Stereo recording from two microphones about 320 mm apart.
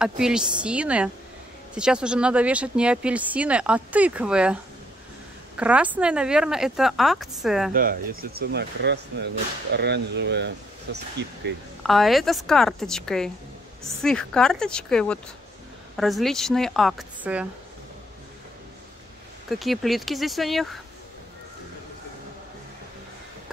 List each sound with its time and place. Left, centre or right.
0.0 s speech: centre
5.6 s speech: centre
7.7 s speech: right
11.8 s speech: centre
19.5 s speech: centre